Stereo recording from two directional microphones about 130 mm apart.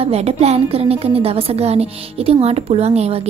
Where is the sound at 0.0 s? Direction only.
50° right (ahead or behind).